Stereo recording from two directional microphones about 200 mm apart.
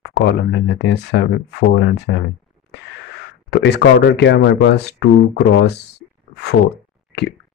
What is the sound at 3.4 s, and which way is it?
Speech, 55° left (ahead or behind).